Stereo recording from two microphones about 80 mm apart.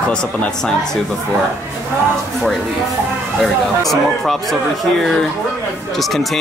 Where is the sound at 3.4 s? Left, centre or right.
Centre.